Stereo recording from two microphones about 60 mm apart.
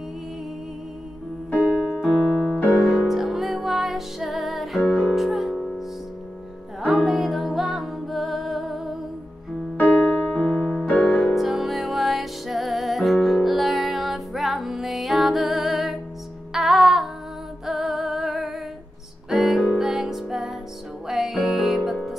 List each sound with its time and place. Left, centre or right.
1.5 s music: right
2.0 s keyboard: centre
2.7 s music: centre
4.8 s music: centre
5.1 s music: centre
7.1 s music: centre
9.8 s music: left
10.2 s keyboard: centre
11.0 s music: centre